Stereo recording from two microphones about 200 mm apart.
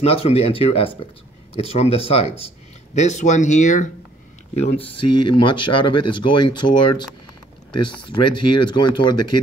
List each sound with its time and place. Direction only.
0.0 s speech: 30° left (ahead or behind)
4.6 s speech: 30° left (ahead or behind)